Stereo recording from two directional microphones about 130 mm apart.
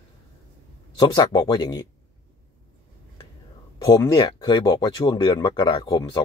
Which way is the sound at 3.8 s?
30° left (ahead or behind).